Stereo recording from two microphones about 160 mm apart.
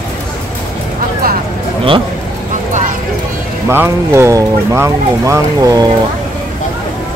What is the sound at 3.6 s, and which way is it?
Speech, 15° right (ahead or behind).